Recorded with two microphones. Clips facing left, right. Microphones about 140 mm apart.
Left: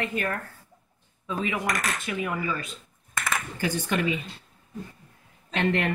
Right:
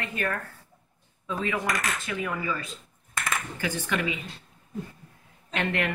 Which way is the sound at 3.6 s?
35° left (ahead or behind).